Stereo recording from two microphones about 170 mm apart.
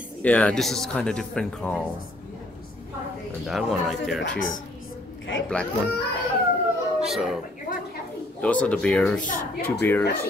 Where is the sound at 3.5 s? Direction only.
Centre (ahead or behind).